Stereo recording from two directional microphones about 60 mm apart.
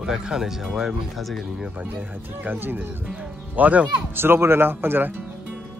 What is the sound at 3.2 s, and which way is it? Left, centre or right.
Music, right.